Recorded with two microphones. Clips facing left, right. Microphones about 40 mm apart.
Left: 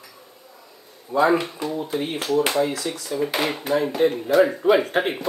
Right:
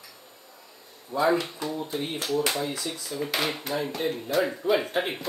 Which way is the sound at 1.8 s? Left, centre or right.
Left.